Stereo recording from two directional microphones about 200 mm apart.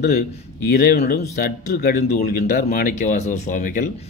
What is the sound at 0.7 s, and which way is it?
Speech, 50° left (ahead or behind).